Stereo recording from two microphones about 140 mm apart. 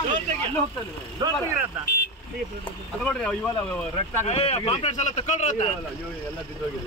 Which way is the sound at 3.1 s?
5° left (ahead or behind).